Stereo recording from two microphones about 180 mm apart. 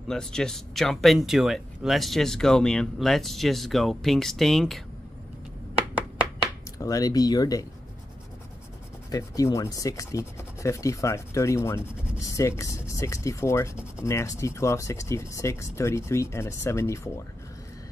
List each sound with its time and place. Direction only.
0.1 s speech: 5° left (ahead or behind)
6.8 s speech: 20° left (ahead or behind)
9.1 s speech: 20° left (ahead or behind)